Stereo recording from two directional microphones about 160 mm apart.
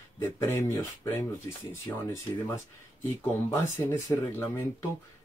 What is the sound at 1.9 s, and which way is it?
Speech, 15° left (ahead or behind).